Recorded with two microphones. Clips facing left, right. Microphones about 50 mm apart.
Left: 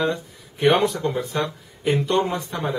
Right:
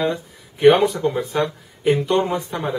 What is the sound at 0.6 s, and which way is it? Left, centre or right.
Speech, right.